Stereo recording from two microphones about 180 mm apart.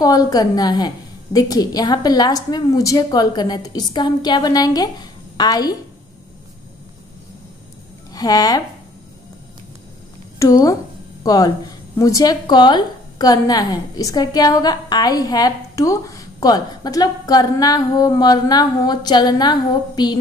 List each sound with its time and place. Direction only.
0.0 s a woman's voice: 20° left (ahead or behind)
8.1 s speech: 20° left (ahead or behind)
10.4 s a woman's voice: 20° left (ahead or behind)